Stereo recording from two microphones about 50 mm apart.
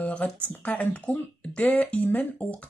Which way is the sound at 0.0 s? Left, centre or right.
Left.